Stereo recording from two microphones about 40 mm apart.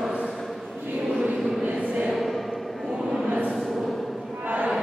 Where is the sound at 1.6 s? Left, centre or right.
Right.